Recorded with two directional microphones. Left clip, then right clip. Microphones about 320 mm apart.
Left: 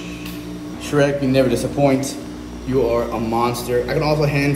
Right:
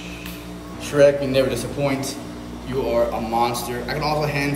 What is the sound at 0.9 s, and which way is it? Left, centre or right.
A man's voice, centre.